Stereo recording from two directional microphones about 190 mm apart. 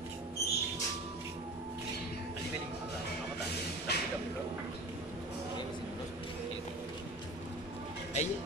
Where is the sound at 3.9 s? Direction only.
60° left (ahead or behind).